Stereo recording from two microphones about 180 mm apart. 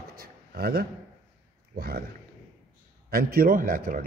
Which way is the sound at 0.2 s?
60° right (ahead or behind).